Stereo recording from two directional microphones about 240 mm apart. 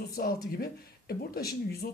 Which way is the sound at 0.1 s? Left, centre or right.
Left.